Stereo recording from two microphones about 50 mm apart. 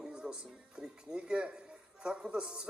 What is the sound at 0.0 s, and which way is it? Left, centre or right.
A man's voice, centre.